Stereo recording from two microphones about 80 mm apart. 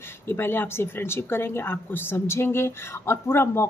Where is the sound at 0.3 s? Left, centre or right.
Left.